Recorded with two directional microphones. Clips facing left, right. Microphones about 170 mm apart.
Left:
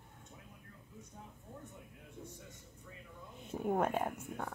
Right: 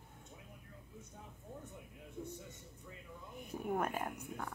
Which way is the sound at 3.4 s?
25° left (ahead or behind).